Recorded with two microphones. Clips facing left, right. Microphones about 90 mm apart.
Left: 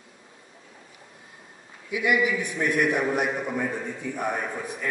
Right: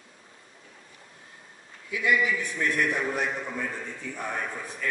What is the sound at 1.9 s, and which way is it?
A man's voice, 15° left (ahead or behind).